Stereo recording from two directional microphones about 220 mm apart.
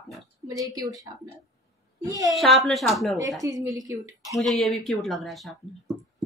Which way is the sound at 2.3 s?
Centre (ahead or behind).